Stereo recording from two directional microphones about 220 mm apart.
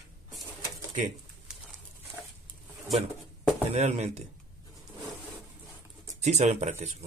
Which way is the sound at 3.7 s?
30° right (ahead or behind).